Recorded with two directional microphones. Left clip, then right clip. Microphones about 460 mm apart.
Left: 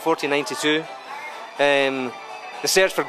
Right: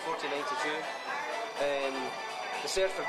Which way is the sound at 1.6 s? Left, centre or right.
Left.